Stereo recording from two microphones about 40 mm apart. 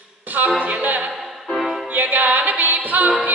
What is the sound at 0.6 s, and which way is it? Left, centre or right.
A capella, right.